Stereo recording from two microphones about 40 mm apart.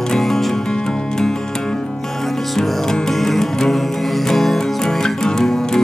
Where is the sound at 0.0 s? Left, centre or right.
Centre.